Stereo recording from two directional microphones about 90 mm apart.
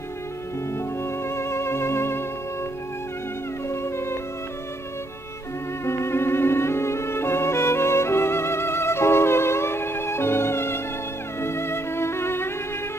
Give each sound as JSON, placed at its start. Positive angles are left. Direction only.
{"t": 0.7, "sound": "music", "side_deg": 30}
{"t": 3.6, "sound": "music", "side_deg": 30}
{"t": 5.9, "sound": "music", "side_deg": 30}